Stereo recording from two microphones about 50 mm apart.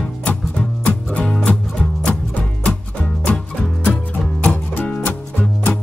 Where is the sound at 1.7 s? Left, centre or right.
Centre.